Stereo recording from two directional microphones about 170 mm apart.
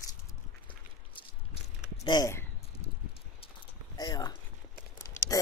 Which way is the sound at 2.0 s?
25° left (ahead or behind).